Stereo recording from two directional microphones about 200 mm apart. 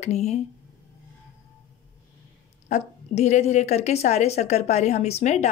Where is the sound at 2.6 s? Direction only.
35° left (ahead or behind).